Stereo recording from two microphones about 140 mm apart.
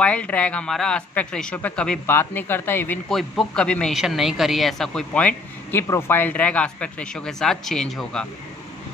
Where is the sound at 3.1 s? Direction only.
Centre (ahead or behind).